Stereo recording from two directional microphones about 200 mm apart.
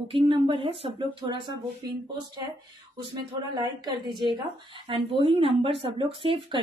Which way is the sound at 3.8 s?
20° right (ahead or behind).